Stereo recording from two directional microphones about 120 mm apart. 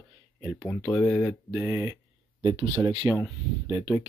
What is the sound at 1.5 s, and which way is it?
Speech, 15° right (ahead or behind).